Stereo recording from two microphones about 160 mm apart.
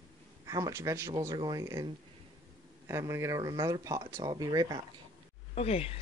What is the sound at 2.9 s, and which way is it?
Speech, 20° right (ahead or behind).